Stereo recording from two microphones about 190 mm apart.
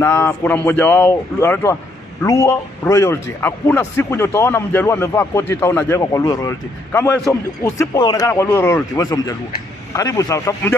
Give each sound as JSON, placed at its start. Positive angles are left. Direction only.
{"t": 0.0, "sound": "a man's voice", "side_deg": 15}